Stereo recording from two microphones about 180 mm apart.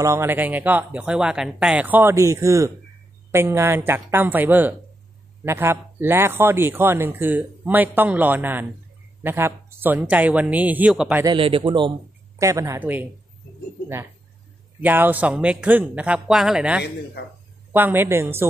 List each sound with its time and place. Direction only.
0.0 s speech: 15° right (ahead or behind)
11.2 s a man's voice: 30° right (ahead or behind)
12.4 s speech: 15° right (ahead or behind)
14.8 s speech: 10° right (ahead or behind)